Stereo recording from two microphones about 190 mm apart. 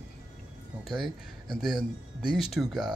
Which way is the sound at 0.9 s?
25° right (ahead or behind).